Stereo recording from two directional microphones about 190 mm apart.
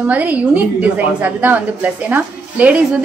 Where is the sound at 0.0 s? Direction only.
10° right (ahead or behind).